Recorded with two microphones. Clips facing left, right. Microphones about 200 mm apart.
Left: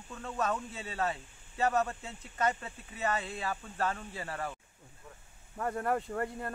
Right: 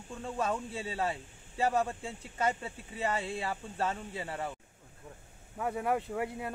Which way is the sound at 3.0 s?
30° right (ahead or behind).